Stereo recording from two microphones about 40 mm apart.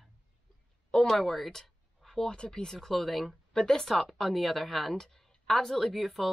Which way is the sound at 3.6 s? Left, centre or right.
Centre.